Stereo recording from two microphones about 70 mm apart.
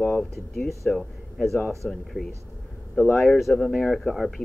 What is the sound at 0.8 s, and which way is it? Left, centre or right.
Speech, centre.